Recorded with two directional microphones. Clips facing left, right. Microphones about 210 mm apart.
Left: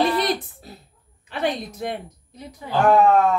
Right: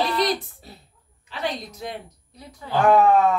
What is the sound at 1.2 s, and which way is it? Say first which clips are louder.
Speech: left 4 dB; 55° left (ahead or behind).